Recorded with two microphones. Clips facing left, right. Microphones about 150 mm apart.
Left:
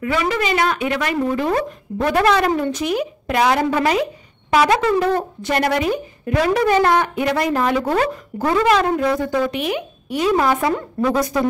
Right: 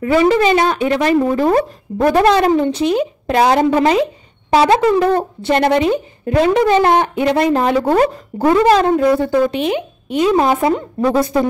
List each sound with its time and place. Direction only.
0.0 s a woman's voice: 30° right (ahead or behind)